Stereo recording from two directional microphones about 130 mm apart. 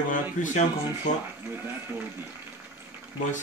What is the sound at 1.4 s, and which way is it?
Speech, 15° right (ahead or behind).